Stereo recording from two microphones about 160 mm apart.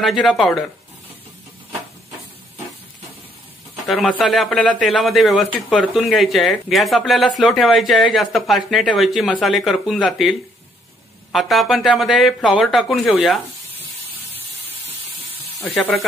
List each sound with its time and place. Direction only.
0.0 s a man's voice: centre (ahead or behind)
3.8 s a man's voice: centre (ahead or behind)
11.3 s a man's voice: centre (ahead or behind)
15.6 s a man's voice: centre (ahead or behind)